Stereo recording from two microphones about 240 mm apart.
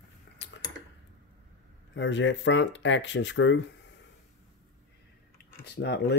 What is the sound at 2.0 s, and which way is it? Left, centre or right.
Speech, left.